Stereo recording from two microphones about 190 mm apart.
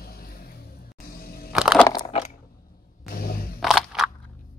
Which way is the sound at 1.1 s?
50° left (ahead or behind).